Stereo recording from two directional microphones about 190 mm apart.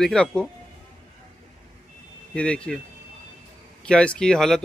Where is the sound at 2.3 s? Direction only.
5° left (ahead or behind).